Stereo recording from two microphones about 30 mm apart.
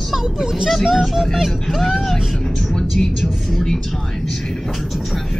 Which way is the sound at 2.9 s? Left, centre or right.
Centre.